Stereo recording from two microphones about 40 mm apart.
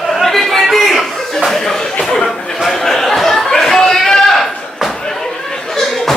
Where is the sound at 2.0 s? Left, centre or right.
Centre.